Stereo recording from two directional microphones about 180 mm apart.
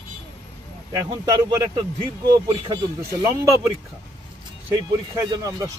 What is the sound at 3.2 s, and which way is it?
Speech, 15° right (ahead or behind).